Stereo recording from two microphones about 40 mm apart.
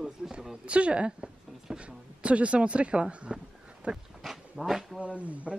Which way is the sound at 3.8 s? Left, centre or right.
Right.